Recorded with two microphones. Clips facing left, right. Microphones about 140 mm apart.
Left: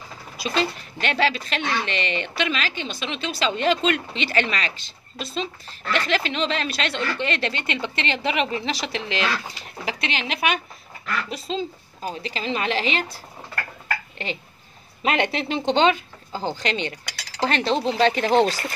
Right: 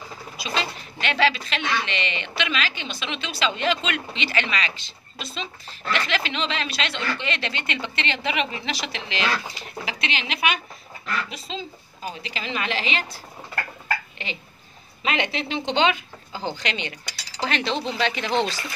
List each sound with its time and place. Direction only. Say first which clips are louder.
0.4 s a woman's voice: left 4 dB; 40° left (ahead or behind)
14.1 s a child's voice: left 4 dB; 45° left (ahead or behind)